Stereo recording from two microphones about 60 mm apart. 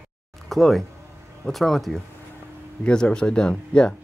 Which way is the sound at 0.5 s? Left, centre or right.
Centre.